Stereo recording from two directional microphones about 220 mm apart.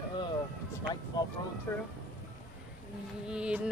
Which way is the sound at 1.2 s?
15° left (ahead or behind).